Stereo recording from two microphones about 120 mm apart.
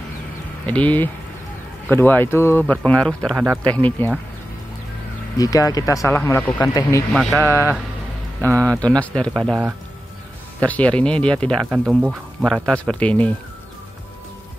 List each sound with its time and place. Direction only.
0.7 s speech: 15° left (ahead or behind)
5.4 s speech: 30° left (ahead or behind)
7.2 s speech: centre (ahead or behind)
7.4 s speech: 20° right (ahead or behind)
8.5 s speech: 10° left (ahead or behind)
9.3 s speech: 5° right (ahead or behind)
10.6 s speech: 10° left (ahead or behind)
11.7 s speech: 5° right (ahead or behind)
12.6 s speech: 5° left (ahead or behind)